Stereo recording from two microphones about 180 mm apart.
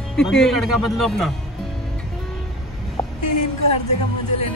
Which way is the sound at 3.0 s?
20° left (ahead or behind).